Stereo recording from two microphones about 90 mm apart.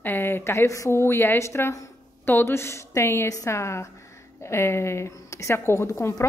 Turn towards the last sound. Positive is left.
turn(degrees=30)  # may be behind; listen again after turning